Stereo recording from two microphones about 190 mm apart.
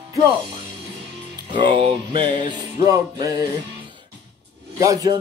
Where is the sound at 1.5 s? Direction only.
25° right (ahead or behind).